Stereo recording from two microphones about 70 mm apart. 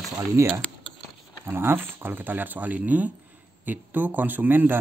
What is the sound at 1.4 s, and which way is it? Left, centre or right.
Speech, right.